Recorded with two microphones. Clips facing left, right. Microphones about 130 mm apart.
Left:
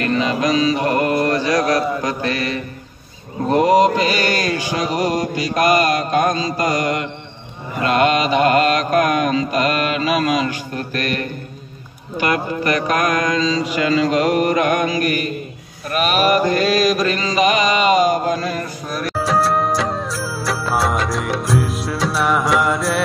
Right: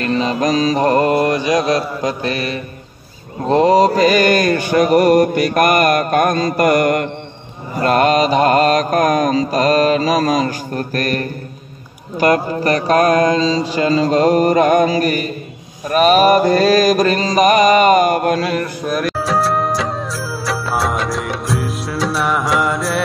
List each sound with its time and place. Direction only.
0.0 s mantra: 35° right (ahead or behind); by 7.1 s 55° right (ahead or behind)
7.7 s mantra: 40° right (ahead or behind); by 18.7 s 70° right (ahead or behind)
19.1 s music: centre (ahead or behind)